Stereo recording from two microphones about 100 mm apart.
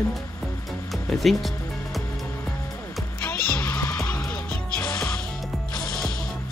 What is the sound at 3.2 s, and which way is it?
Music, 20° left (ahead or behind).